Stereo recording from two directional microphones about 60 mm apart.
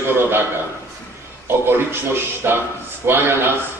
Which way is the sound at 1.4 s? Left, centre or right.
Right.